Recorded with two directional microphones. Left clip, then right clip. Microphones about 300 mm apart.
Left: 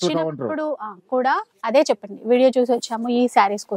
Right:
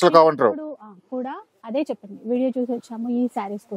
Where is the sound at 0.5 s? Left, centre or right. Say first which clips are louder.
Left 9 dB; centre.